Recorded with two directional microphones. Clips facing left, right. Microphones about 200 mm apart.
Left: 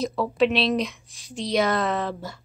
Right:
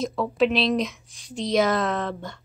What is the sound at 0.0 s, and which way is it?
Speech, centre (ahead or behind).